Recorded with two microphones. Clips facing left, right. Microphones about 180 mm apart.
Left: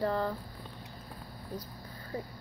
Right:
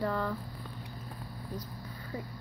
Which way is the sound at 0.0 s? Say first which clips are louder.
Left 2 dB; 35° left (ahead or behind).